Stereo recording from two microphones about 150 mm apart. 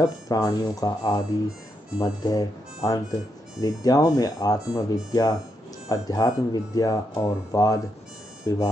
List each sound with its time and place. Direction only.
0.0 s speech: 20° left (ahead or behind)